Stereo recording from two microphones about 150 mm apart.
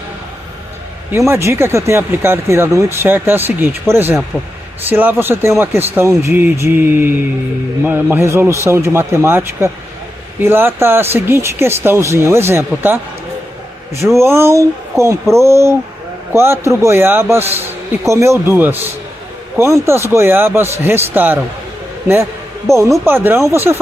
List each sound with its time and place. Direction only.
1.1 s speech: 20° right (ahead or behind)
14.2 s speech: 15° right (ahead or behind)
22.7 s speech: 20° right (ahead or behind)